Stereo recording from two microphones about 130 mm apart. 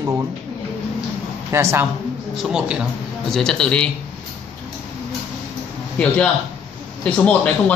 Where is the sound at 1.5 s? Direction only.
20° right (ahead or behind).